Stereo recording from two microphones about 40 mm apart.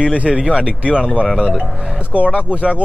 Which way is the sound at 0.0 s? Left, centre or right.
Right.